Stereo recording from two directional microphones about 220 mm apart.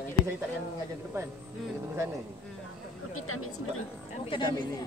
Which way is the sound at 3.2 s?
80° left.